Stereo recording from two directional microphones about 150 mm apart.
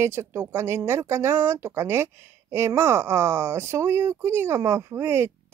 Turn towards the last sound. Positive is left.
turn(degrees=-15)  # may be behind; listen again after turning